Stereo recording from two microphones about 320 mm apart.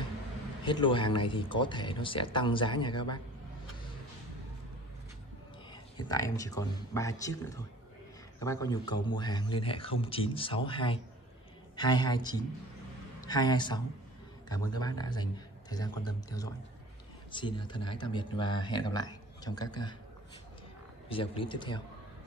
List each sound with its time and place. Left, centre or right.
0.7 s speech: centre
5.7 s speech: centre
21.1 s speech: centre